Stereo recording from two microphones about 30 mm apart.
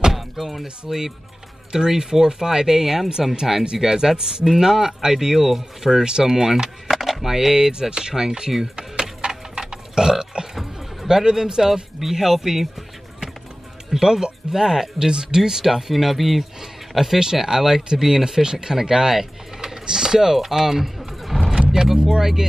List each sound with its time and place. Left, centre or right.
0.1 s speech: centre
8.7 s burping: right
11.1 s speech: centre
15.9 s speech: centre
21.5 s vehicle: right
22.2 s speech: centre